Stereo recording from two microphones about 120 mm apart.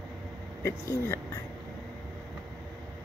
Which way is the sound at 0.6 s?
20° left (ahead or behind).